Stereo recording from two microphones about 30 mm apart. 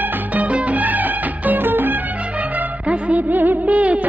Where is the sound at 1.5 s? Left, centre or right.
Right.